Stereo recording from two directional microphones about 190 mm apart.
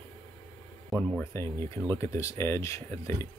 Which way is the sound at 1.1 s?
15° left (ahead or behind).